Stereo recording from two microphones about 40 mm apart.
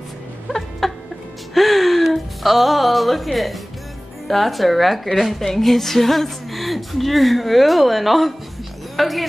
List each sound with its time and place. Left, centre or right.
0.6 s music: centre
4.3 s a woman's voice: centre